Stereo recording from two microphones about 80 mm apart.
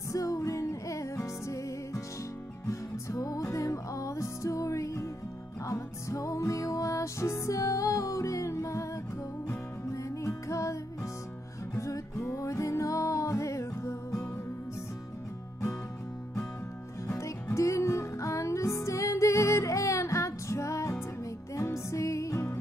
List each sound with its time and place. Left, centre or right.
0.1 s music: left
17.1 s music: left